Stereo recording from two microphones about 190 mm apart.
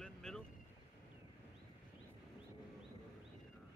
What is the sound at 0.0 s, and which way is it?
Boat, 5° left (ahead or behind).